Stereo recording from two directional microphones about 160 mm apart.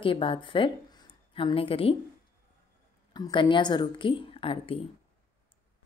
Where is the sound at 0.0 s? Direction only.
35° left (ahead or behind).